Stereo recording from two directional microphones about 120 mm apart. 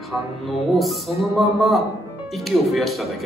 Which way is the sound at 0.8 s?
Centre (ahead or behind).